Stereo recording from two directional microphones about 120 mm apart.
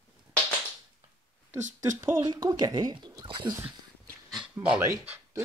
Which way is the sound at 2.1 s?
35° right (ahead or behind).